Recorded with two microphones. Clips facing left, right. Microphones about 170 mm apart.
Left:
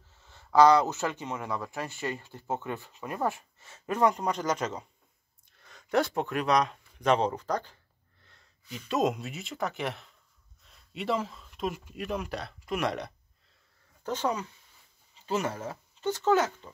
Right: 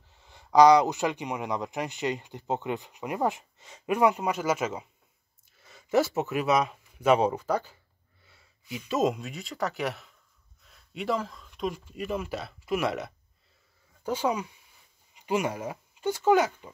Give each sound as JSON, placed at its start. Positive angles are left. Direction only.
{"t": 0.1, "sound": "speech", "side_deg": -15}
{"t": 10.7, "sound": "a sound", "side_deg": 0}
{"t": 11.9, "sound": "speech", "side_deg": 0}